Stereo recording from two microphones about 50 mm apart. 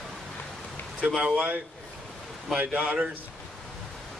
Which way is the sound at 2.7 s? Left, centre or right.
Right.